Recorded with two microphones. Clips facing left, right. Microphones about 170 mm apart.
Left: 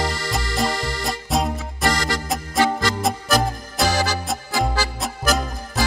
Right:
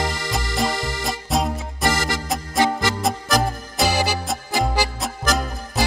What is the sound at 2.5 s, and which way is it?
Music, 20° right (ahead or behind).